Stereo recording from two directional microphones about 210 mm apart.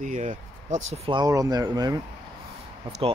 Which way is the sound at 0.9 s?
25° right (ahead or behind).